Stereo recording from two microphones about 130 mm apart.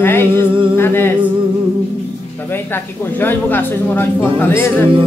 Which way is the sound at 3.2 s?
15° left (ahead or behind).